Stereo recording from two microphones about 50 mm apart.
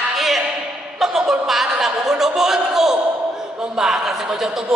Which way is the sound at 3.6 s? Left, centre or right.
Centre.